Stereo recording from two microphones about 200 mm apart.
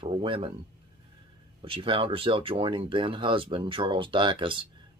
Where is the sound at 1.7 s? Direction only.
25° right (ahead or behind).